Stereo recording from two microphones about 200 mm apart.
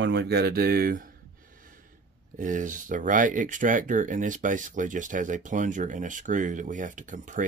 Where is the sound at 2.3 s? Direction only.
40° right (ahead or behind).